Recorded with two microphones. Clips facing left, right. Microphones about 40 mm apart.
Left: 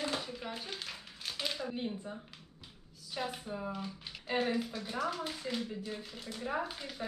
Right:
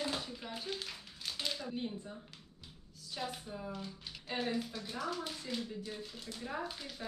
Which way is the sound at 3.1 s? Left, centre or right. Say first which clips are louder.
Left 3 dB; centre.